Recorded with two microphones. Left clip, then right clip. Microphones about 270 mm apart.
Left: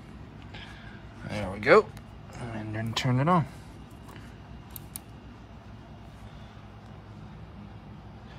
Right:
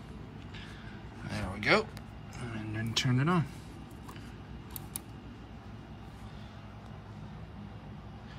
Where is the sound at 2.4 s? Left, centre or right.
Centre.